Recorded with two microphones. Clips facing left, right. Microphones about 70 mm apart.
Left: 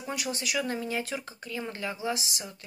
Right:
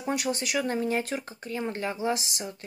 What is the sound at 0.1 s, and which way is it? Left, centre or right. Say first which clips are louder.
Speech: right 4 dB; right.